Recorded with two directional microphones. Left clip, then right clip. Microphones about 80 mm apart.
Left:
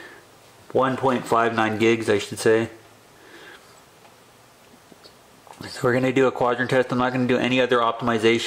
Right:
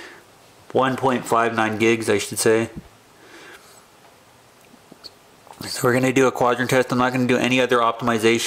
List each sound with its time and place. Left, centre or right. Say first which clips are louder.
0.7 s speech: right 1 dB; centre
5.6 s speech: right 2 dB; right